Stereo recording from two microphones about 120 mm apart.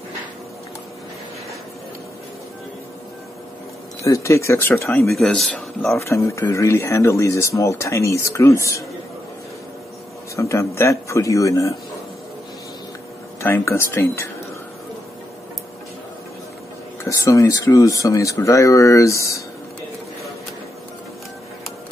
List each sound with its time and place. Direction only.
4.0 s speech: 25° left (ahead or behind)
5.0 s speech: 5° left (ahead or behind)
5.9 s speech: 25° left (ahead or behind)
10.3 s speech: 25° left (ahead or behind)
13.4 s speech: 20° left (ahead or behind)
17.0 s speech: 25° left (ahead or behind)